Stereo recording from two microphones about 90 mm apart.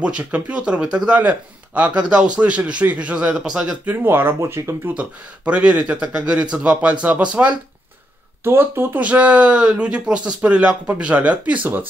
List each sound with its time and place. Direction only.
0.0 s speech: 15° right (ahead or behind)
3.9 s speech: 25° right (ahead or behind)
4.4 s speech: 35° right (ahead or behind)
4.8 s speech: 15° right (ahead or behind)
8.5 s speech: 25° right (ahead or behind)
9.0 s speech: 15° right (ahead or behind)